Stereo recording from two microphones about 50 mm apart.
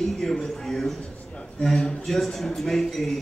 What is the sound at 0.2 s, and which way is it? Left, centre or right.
A man's voice, centre.